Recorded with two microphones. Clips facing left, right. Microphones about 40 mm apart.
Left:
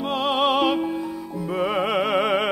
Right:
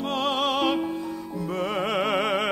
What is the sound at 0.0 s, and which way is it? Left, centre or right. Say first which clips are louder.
Music: left 3 dB; centre.